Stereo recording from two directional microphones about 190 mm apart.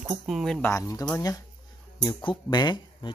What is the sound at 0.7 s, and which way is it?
Speech, 15° left (ahead or behind).